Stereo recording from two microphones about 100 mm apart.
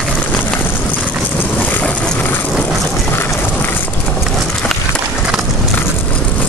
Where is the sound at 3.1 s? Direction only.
20° left (ahead or behind).